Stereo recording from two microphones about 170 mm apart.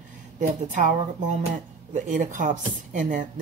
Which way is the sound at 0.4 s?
45° right (ahead or behind).